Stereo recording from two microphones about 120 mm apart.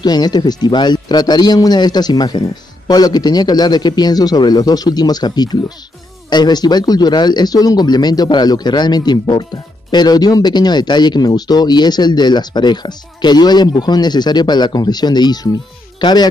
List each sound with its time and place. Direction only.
0.0 s speech: 35° left (ahead or behind)